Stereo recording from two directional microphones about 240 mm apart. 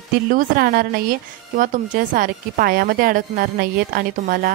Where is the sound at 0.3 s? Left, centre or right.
Right.